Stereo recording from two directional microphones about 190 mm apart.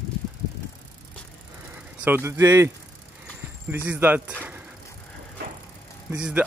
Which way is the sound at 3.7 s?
10° right (ahead or behind).